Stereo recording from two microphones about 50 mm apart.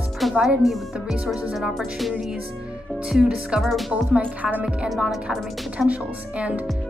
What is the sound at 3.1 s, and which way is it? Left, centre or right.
Speech, centre.